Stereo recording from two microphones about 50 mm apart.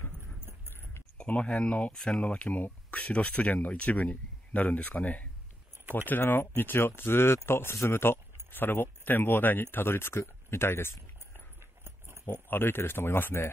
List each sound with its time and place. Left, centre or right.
0.5 s a sound: right
1.1 s speech: left
2.0 s speech: centre
2.2 s speech: left
6.0 s speech: left
12.3 s speech: left